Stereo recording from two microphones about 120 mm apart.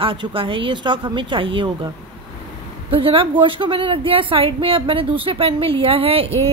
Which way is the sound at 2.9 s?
50° right (ahead or behind).